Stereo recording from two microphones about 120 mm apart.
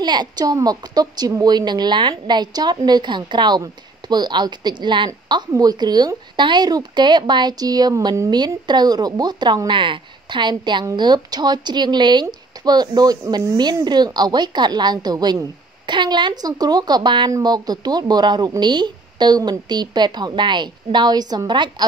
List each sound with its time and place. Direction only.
0.0 s a woman's voice: 40° right (ahead or behind)